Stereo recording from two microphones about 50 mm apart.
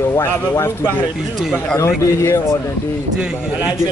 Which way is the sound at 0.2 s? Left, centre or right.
Left.